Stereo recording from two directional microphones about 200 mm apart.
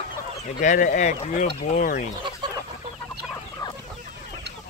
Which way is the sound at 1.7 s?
40° left (ahead or behind).